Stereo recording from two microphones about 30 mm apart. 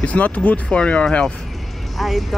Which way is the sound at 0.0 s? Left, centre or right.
Left.